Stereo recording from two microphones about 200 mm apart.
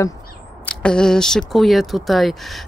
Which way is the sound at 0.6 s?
5° left (ahead or behind).